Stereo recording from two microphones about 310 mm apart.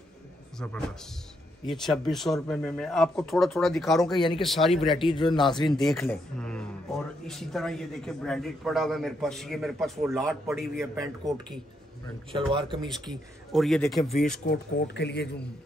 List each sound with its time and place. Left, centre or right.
0.6 s speech: centre
4.9 s a man's voice: centre
5.7 s speech: centre
12.3 s speech: centre
13.1 s speech: centre
14.4 s speech: left